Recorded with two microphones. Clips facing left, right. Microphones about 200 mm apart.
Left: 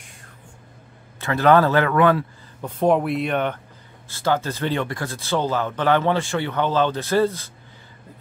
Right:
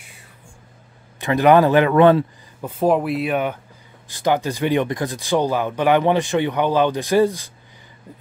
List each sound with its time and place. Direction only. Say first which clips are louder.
1.2 s a man's voice: right 3 dB; 15° right (ahead or behind)
2.6 s a man's voice: right 1 dB; 5° right (ahead or behind)